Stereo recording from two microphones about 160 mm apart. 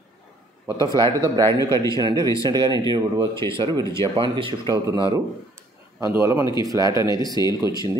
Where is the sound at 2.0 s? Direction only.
25° right (ahead or behind).